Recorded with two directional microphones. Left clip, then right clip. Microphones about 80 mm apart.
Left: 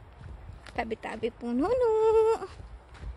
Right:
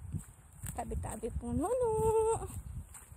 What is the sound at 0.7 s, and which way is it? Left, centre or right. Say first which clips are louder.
Speech: left 9 dB; left.